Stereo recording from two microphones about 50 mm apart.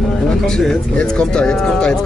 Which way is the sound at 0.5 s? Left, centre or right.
Centre.